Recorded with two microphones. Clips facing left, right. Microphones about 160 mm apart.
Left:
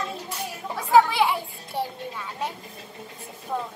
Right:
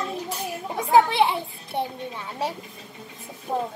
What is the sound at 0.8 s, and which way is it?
A child's voice, 20° right (ahead or behind).